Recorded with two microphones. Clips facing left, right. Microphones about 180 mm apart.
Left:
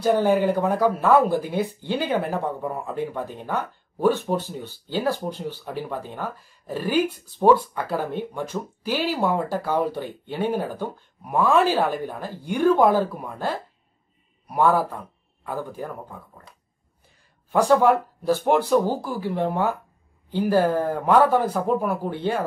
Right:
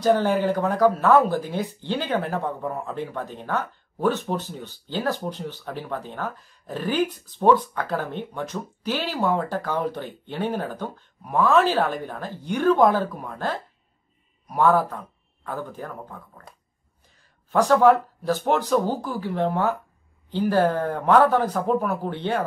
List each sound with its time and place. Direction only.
0.0 s speech: 10° left (ahead or behind)
16.5 s a sound: 45° right (ahead or behind)
17.5 s speech: 10° left (ahead or behind)